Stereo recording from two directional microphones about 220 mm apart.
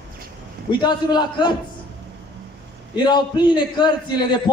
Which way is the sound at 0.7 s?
20° left (ahead or behind).